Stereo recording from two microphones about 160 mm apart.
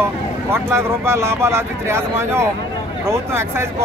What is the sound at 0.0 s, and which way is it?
Speech, 15° right (ahead or behind).